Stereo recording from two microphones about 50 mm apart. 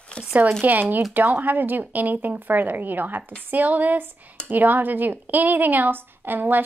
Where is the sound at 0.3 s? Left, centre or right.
Right.